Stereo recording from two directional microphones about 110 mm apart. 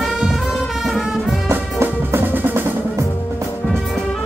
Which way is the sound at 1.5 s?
20° right (ahead or behind).